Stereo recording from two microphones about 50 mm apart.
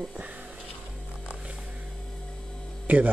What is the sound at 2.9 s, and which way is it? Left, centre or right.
Speech, right.